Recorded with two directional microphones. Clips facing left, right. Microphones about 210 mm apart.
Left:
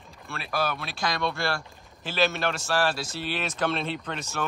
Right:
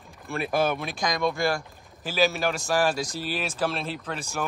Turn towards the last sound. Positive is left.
turn(degrees=-10)  # may be behind; listen again after turning